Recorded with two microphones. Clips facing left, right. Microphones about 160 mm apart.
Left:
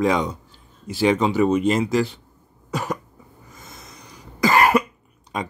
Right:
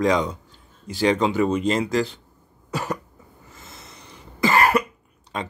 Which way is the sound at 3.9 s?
25° right (ahead or behind).